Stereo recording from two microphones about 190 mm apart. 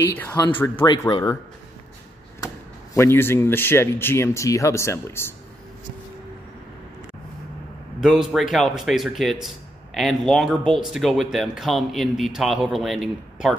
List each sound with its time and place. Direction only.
0.8 s speech: 20° left (ahead or behind)
2.4 s speech: 15° left (ahead or behind)
8.0 s speech: centre (ahead or behind)